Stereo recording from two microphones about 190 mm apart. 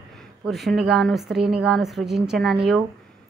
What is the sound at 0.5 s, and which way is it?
A woman's voice, centre (ahead or behind).